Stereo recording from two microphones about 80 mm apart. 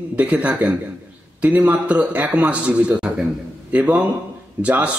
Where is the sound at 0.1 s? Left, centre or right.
Centre.